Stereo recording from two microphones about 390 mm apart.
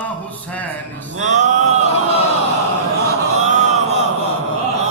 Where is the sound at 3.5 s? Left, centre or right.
Centre.